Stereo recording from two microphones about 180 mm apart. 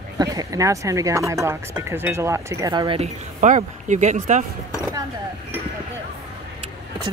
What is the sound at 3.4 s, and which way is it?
Speech, 45° right (ahead or behind).